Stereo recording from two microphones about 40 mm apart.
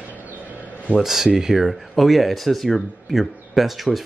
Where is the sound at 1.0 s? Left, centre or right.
Centre.